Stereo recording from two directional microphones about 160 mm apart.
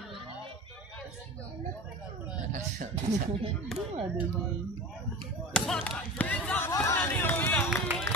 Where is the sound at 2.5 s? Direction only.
55° right (ahead or behind).